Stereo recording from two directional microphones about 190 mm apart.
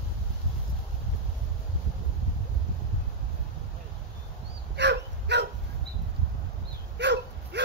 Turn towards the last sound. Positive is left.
turn(degrees=-65)  # may be behind; listen again after turning